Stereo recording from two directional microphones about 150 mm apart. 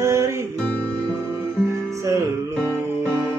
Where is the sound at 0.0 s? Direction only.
20° right (ahead or behind).